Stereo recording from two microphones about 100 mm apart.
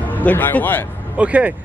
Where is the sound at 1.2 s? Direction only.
10° right (ahead or behind).